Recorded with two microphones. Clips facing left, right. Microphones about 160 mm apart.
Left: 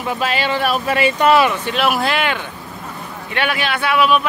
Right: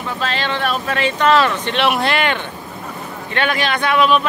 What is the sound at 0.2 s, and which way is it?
Speech, 10° left (ahead or behind).